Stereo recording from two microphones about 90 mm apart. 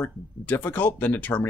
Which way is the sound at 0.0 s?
20° left (ahead or behind).